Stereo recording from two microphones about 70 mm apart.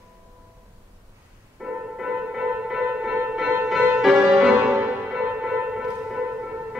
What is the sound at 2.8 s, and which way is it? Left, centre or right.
Music, centre.